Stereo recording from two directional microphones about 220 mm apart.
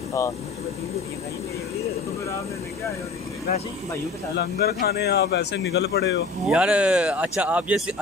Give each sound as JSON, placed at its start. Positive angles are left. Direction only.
{"t": 4.4, "sound": "speech", "side_deg": 45}
{"t": 6.4, "sound": "speech", "side_deg": -5}